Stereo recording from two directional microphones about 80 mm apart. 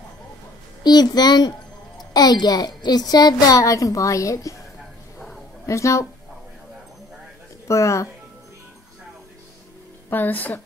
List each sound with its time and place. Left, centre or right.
0.8 s a child's voice: left
5.7 s speech: left
7.6 s speech: left
10.0 s a woman's voice: left